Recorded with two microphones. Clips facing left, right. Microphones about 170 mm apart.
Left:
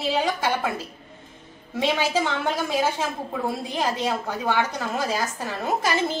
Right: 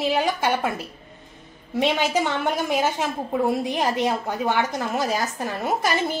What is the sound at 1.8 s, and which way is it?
A woman's voice, 20° right (ahead or behind).